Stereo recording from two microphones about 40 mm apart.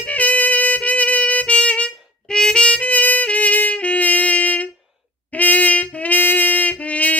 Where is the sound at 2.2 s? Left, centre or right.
Centre; by 6.2 s left.